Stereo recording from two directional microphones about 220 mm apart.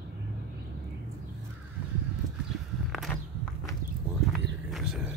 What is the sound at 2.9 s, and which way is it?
Walk, centre (ahead or behind).